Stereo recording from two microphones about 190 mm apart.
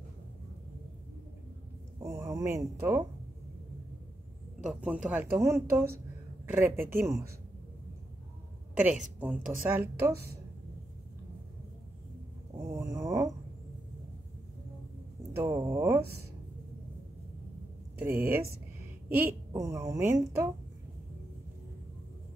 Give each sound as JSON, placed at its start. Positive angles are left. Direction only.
{"t": 2.0, "sound": "a woman's voice", "side_deg": -15}
{"t": 4.6, "sound": "a woman's voice", "side_deg": -5}
{"t": 8.7, "sound": "a woman's voice", "side_deg": -5}
{"t": 12.6, "sound": "a sound", "side_deg": -15}
{"t": 15.3, "sound": "a woman's voice", "side_deg": -20}
{"t": 17.9, "sound": "a woman's voice", "side_deg": -10}